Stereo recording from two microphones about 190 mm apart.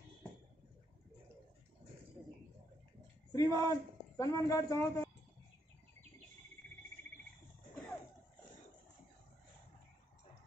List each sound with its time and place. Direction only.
3.3 s speech: 15° left (ahead or behind)